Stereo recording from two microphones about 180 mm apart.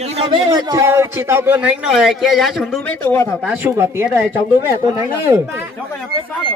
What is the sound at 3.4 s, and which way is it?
Speech, 10° right (ahead or behind).